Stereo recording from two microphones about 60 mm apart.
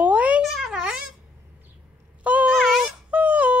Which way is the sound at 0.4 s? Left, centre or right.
Centre.